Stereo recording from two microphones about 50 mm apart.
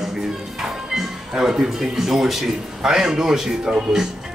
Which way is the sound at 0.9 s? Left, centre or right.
Centre.